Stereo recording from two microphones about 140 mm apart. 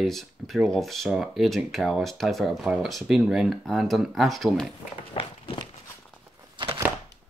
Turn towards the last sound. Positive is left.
turn(degrees=-35)  # may be behind; listen again after turning